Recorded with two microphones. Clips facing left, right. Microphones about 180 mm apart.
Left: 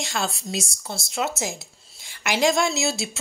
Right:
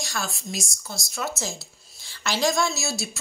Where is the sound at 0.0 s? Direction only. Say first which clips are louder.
Left 4 dB; 25° left (ahead or behind).